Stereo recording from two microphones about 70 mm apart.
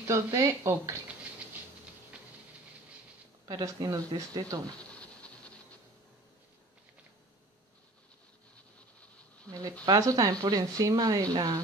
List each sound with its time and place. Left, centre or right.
0.0 s speech: right
3.8 s speech: right
4.9 s a sound: centre
9.5 s speech: right